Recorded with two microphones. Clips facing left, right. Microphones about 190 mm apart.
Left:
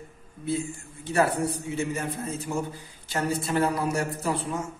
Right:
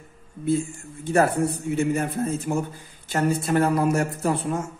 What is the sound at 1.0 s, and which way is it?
A man's voice, 50° right (ahead or behind).